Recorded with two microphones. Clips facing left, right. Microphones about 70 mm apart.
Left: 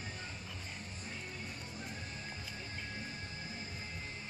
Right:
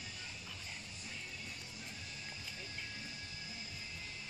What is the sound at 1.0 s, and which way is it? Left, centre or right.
Music, left.